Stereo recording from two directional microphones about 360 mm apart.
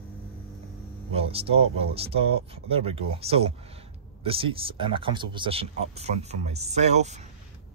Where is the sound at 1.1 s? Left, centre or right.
Centre.